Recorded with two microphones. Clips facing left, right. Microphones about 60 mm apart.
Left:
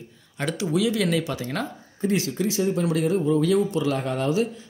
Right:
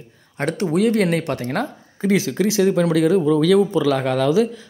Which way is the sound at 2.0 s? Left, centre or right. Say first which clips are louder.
Right 5 dB; right.